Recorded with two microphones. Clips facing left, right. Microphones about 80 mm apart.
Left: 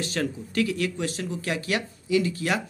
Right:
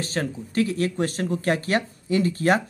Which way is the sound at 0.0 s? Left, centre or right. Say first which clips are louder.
Right 1 dB; right.